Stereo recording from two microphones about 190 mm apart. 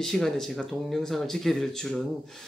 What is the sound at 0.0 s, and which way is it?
Speech, centre (ahead or behind).